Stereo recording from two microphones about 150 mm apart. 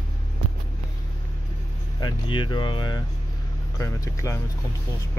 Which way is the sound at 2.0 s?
30° left (ahead or behind).